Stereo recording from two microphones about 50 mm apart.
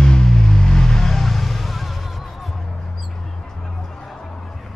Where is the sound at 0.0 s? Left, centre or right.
Centre.